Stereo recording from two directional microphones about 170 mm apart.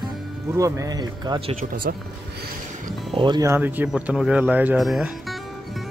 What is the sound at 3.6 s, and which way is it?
Speech, 10° right (ahead or behind).